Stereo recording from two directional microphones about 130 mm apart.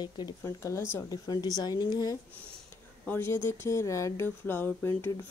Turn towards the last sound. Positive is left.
turn(degrees=20)  # may be behind; listen again after turning